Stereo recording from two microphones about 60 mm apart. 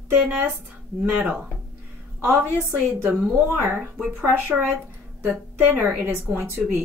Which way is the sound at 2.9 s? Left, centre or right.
Right.